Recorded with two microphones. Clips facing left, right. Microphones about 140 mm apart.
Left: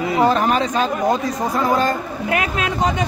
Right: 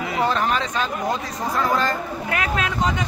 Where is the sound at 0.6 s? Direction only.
45° left (ahead or behind).